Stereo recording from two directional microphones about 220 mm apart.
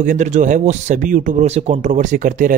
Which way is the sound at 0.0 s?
35° right (ahead or behind).